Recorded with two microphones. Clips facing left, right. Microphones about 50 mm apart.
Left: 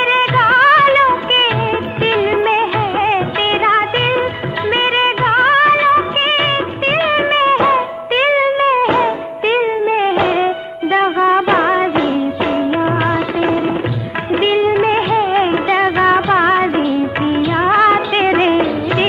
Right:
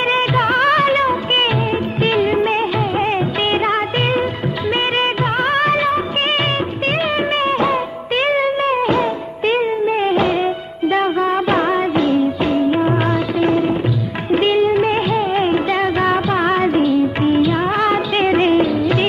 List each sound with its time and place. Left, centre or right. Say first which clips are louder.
0.1 s music: left 5 dB; centre
14.3 s music of bollywood: left 1 dB; centre